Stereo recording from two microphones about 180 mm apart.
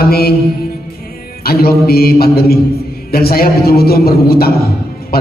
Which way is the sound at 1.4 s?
60° left (ahead or behind).